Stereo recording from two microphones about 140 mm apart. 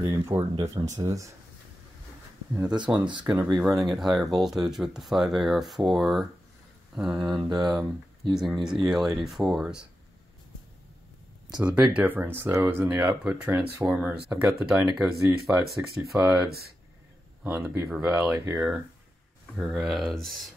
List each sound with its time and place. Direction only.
0.0 s speech: 25° right (ahead or behind)
2.5 s speech: 5° right (ahead or behind)
11.6 s speech: 10° right (ahead or behind)
16.4 s speech: 90° right
17.4 s speech: 15° right (ahead or behind)
18.4 s speech: 20° right (ahead or behind)
19.5 s speech: 5° right (ahead or behind)